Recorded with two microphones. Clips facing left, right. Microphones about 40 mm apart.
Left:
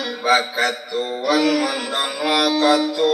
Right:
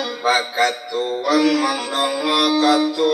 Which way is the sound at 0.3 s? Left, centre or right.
Centre.